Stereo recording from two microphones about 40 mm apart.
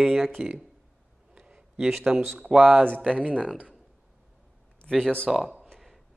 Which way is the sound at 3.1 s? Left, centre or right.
Right.